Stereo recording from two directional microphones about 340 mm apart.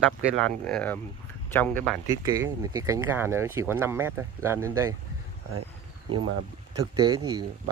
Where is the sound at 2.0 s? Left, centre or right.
Centre.